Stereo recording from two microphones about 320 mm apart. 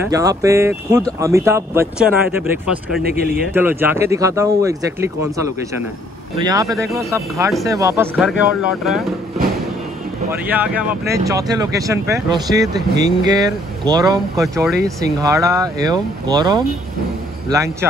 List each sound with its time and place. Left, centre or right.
0.1 s speech: centre
3.0 s speech: right
3.5 s speech: centre
6.3 s speech: centre
10.3 s speech: centre
14.4 s speech: centre